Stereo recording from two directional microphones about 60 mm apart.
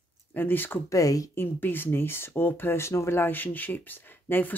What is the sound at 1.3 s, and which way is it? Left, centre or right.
Speech, left.